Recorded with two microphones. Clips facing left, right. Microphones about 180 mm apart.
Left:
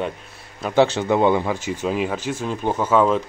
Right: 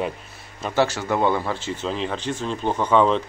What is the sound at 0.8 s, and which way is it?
Speech, 20° left (ahead or behind).